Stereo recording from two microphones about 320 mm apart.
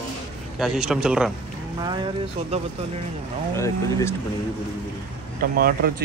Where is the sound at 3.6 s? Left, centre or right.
Centre.